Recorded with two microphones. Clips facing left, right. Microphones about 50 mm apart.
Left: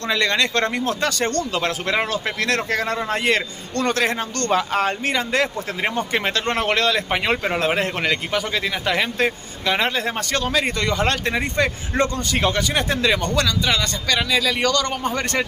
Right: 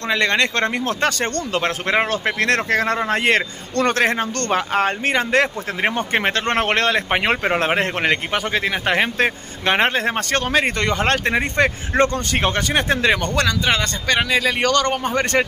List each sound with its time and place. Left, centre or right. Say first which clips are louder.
0.1 s a man's voice: right 2 dB; right